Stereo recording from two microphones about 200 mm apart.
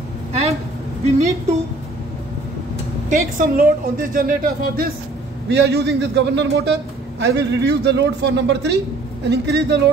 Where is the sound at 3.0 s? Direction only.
40° right (ahead or behind).